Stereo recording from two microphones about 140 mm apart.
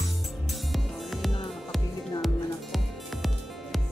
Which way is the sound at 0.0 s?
Centre (ahead or behind).